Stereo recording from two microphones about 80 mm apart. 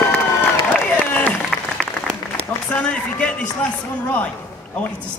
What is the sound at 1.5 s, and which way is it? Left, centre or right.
Applause, centre.